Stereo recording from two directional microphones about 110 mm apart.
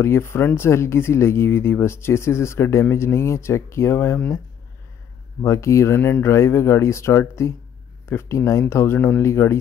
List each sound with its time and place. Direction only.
0.0 s speech: 20° left (ahead or behind)
5.4 s speech: 25° left (ahead or behind)